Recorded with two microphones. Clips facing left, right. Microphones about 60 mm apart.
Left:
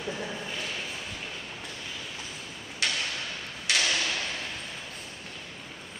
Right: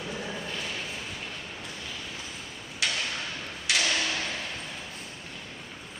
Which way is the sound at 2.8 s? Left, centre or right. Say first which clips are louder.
Even; centre.